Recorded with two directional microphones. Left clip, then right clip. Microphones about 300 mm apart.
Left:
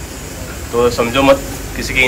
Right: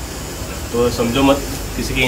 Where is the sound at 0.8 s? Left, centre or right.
Centre.